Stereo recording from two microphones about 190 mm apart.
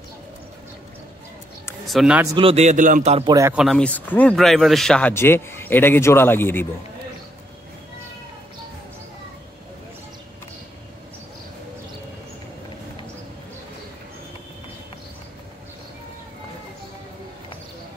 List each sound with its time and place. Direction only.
1.9 s a man's voice: 5° right (ahead or behind)
2.2 s a man's voice: 25° right (ahead or behind)
3.5 s speech: centre (ahead or behind)